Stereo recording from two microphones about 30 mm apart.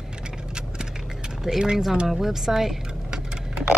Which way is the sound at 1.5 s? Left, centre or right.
Centre.